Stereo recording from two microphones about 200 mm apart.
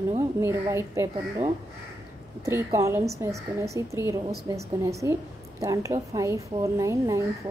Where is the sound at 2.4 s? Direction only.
15° right (ahead or behind).